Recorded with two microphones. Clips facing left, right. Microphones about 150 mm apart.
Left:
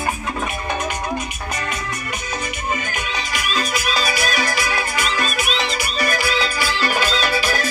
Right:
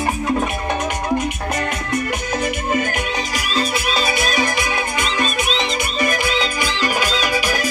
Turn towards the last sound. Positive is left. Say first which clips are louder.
# right 1 dB
turn(degrees=-15)  # may be behind; listen again after turning